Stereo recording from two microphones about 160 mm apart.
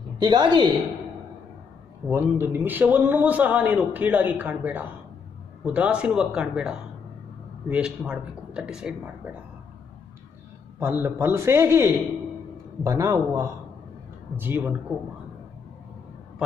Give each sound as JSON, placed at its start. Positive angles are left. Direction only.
{"t": 0.2, "sound": "a man's voice", "side_deg": -25}
{"t": 2.0, "sound": "a man's voice", "side_deg": -15}
{"t": 10.8, "sound": "a man's voice", "side_deg": -15}